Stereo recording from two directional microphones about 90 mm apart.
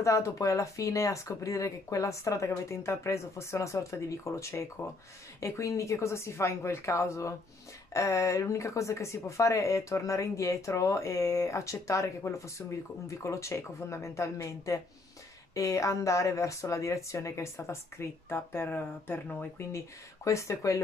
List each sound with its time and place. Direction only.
0.0 s speech: 35° left (ahead or behind)
20.2 s speech: 35° left (ahead or behind)